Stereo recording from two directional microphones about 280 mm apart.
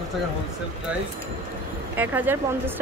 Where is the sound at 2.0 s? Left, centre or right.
Centre.